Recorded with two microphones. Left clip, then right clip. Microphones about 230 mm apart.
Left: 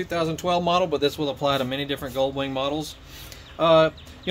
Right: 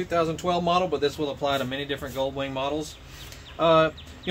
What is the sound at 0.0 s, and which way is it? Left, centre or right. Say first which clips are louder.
Speech: even; left.